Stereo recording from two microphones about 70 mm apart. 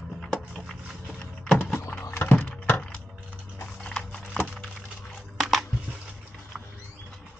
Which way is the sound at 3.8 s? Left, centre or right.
Centre.